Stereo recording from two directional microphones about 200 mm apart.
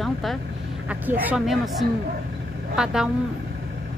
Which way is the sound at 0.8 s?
10° right (ahead or behind).